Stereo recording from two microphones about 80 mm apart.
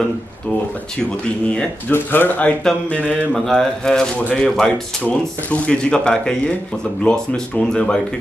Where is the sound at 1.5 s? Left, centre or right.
Centre.